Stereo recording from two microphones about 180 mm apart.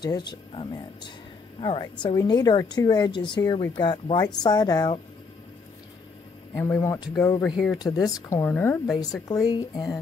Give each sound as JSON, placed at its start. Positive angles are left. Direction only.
{"t": 0.0, "sound": "a woman's voice", "side_deg": 25}
{"t": 6.5, "sound": "speech", "side_deg": 15}
{"t": 7.4, "sound": "speech", "side_deg": 0}
{"t": 7.7, "sound": "a woman's voice", "side_deg": 20}